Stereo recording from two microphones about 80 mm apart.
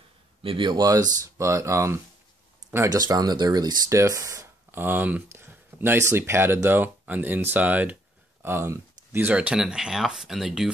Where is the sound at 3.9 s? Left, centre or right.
Right.